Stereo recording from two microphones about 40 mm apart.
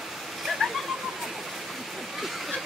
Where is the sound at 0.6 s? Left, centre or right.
Centre.